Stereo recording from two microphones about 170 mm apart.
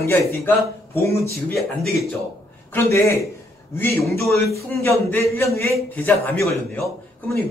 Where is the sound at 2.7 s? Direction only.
15° left (ahead or behind).